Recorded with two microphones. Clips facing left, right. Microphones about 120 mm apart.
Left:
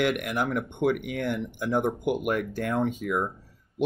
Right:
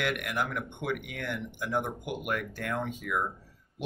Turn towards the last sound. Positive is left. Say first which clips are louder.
# left 6 dB
turn(degrees=25)  # may be behind; listen again after turning